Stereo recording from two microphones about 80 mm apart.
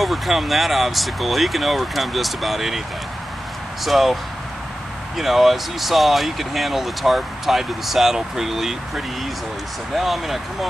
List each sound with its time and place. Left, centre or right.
0.0 s speech: centre
3.8 s speech: centre